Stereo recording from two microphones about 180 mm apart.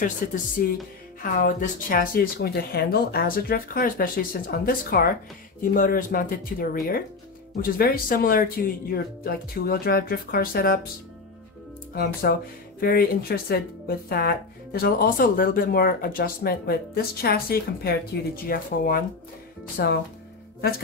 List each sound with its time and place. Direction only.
0.0 s speech: 50° left (ahead or behind)
11.9 s speech: 55° left (ahead or behind)